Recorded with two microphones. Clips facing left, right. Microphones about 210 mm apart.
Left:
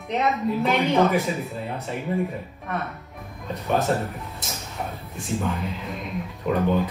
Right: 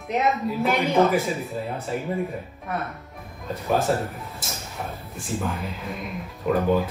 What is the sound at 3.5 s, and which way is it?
Speech, centre (ahead or behind).